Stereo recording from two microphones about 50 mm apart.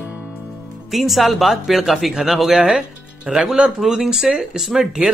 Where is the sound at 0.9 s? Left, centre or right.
Centre.